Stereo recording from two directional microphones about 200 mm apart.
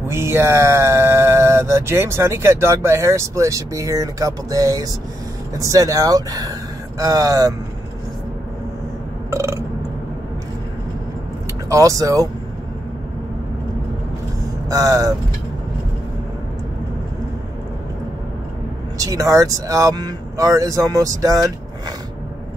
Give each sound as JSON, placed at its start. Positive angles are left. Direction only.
{"t": 0.1, "sound": "speech", "side_deg": -10}
{"t": 9.3, "sound": "burping", "side_deg": -15}
{"t": 11.7, "sound": "speech", "side_deg": -15}
{"t": 14.7, "sound": "speech", "side_deg": -15}
{"t": 18.9, "sound": "speech", "side_deg": -15}